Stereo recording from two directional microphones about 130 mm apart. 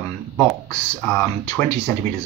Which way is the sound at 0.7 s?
20° left (ahead or behind).